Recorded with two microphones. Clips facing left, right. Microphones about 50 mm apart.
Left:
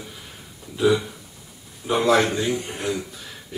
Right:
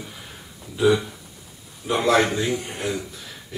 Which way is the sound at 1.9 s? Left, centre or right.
Centre.